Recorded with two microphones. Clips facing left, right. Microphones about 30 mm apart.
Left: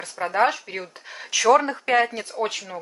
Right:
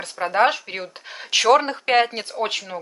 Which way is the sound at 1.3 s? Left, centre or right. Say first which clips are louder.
Right 1 dB; right.